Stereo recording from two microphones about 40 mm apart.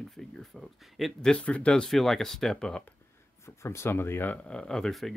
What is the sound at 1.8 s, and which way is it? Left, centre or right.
Speech, centre.